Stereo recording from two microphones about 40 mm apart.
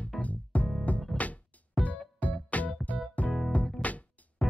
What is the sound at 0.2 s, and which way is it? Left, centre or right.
Music, left.